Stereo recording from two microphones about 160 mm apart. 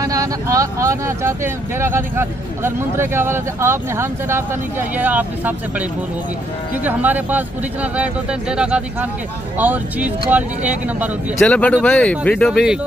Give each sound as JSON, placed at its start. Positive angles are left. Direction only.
{"t": 0.0, "sound": "speech", "side_deg": -20}
{"t": 11.4, "sound": "speech", "side_deg": 10}